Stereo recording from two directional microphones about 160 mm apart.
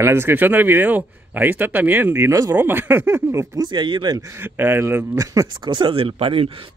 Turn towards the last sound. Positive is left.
turn(degrees=-35)  # may be behind; listen again after turning